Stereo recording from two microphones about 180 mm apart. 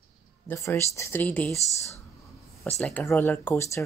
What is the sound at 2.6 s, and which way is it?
Speech, 5° left (ahead or behind).